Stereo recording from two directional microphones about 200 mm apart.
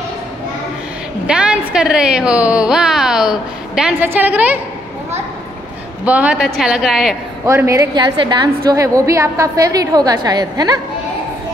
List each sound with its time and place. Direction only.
1.2 s a woman's voice: 5° right (ahead or behind)
6.0 s a woman's voice: 5° right (ahead or behind)
7.4 s a woman's voice: 15° right (ahead or behind)